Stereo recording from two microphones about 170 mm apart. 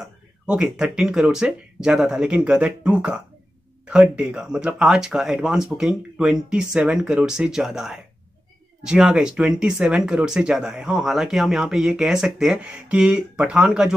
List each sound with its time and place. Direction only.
0.0 s speech: 5° right (ahead or behind)